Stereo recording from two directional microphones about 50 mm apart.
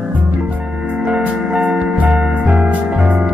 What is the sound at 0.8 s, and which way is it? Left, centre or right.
Music, right.